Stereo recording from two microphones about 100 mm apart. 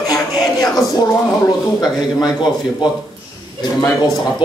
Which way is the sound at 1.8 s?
45° left (ahead or behind).